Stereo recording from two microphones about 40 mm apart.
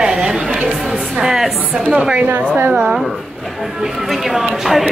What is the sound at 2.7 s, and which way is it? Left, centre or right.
Speech, centre.